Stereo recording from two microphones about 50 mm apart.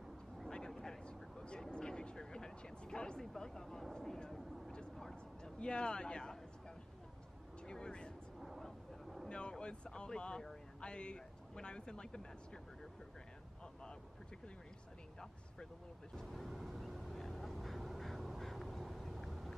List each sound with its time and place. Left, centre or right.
0.5 s vehicle: centre
3.9 s a sound: centre
5.6 s speech: centre
7.6 s a sound: centre
8.4 s vehicle: centre
9.3 s speech: left
16.3 s vehicle: centre